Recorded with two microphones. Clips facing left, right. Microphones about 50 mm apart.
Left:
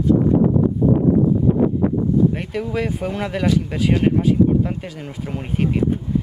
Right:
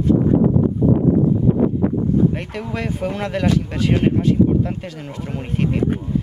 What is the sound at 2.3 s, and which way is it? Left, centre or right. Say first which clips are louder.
Speech: left 2 dB; centre.